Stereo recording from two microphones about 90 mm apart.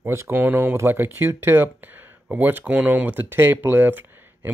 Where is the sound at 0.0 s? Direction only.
30° right (ahead or behind).